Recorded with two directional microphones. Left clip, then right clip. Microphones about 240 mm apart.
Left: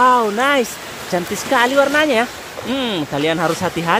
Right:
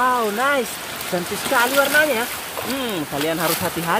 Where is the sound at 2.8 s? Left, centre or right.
Centre.